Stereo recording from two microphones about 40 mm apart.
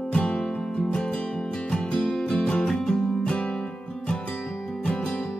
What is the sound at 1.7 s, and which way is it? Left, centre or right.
Music, left.